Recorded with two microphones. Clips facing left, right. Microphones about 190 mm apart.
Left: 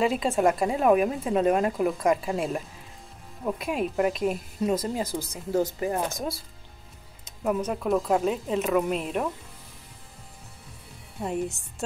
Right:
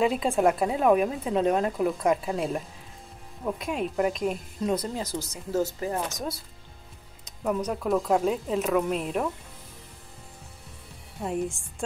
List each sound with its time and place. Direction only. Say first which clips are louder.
0.0 s speech: even; centre (ahead or behind)
5.0 s speech: left 1 dB; 55° left (ahead or behind)
5.5 s speech: left 2 dB; 15° left (ahead or behind)
6.0 s speech: left 2 dB; 30° left (ahead or behind)
7.4 s speech: left 1 dB; 5° left (ahead or behind)